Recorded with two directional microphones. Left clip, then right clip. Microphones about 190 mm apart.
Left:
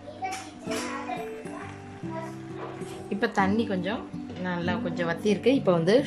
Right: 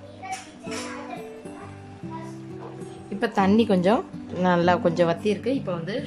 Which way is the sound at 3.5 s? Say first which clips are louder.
Right 9 dB; 20° right (ahead or behind).